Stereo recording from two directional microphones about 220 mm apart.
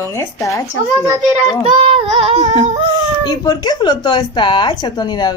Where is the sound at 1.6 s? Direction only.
25° right (ahead or behind).